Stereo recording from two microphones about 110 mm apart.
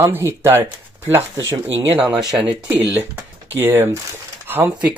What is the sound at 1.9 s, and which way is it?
Speech, 5° right (ahead or behind).